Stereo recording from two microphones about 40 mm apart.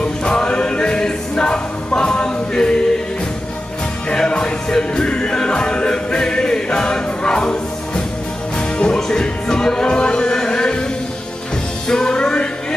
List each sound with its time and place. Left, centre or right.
0.0 s music: left
4.1 s music: left
11.9 s music: centre